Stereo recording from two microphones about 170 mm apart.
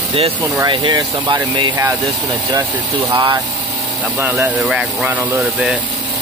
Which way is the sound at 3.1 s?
20° right (ahead or behind).